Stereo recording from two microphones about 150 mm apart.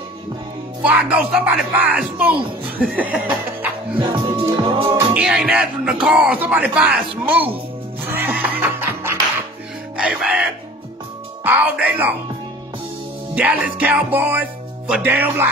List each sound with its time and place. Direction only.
0.8 s speech: 5° right (ahead or behind)
4.0 s music: 30° right (ahead or behind)
5.1 s speech: 5° right (ahead or behind)
8.1 s music: 10° right (ahead or behind)
11.4 s speech: 10° right (ahead or behind)
13.3 s speech: 10° right (ahead or behind)